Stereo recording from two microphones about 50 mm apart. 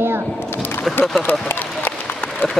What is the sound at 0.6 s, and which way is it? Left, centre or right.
Music, left.